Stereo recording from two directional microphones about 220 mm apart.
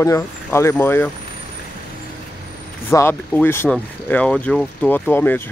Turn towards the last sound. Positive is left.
turn(degrees=10)  # may be behind; listen again after turning